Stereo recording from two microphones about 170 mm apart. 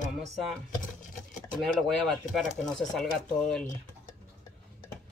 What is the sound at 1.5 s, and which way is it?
Speech, centre (ahead or behind).